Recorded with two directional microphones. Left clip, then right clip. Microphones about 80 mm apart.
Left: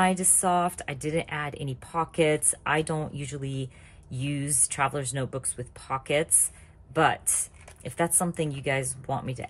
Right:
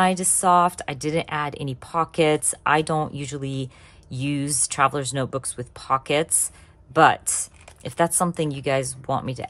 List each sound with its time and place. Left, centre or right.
0.1 s a woman's voice: right
0.5 s a woman's voice: right
1.1 s a woman's voice: right
7.3 s a sound: right
8.4 s a woman's voice: right